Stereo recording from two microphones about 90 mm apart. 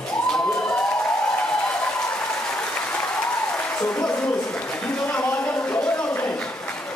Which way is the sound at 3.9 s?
10° left (ahead or behind).